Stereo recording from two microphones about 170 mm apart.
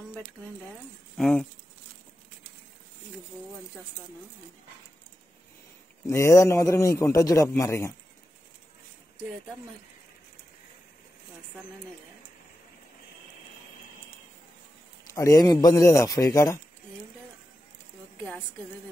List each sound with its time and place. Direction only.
1.1 s speech: centre (ahead or behind)
6.0 s a man's voice: 20° left (ahead or behind)
15.1 s speech: 20° left (ahead or behind)